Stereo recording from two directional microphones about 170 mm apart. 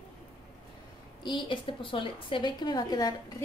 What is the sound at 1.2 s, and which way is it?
A woman's voice, 30° left (ahead or behind).